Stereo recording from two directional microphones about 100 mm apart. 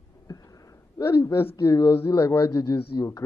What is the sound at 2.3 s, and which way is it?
Speech, 40° left (ahead or behind).